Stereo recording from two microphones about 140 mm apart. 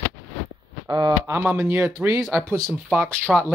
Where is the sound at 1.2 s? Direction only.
15° right (ahead or behind).